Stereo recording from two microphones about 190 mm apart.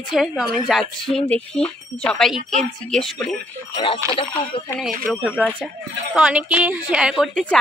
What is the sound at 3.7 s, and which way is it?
Speech, 30° left (ahead or behind).